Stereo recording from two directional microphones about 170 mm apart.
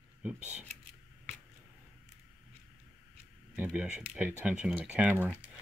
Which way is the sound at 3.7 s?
5° right (ahead or behind).